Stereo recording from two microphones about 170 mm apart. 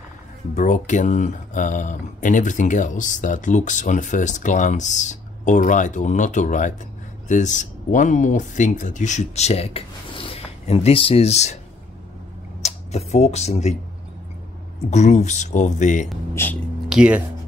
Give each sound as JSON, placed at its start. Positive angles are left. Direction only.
{"t": 0.6, "sound": "speech", "side_deg": 45}
{"t": 12.6, "sound": "speech", "side_deg": 40}
{"t": 14.9, "sound": "speech", "side_deg": 45}
{"t": 16.4, "sound": "speech", "side_deg": 15}
{"t": 16.9, "sound": "speech", "side_deg": -5}